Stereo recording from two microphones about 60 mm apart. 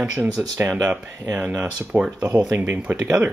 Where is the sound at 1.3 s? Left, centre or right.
Right.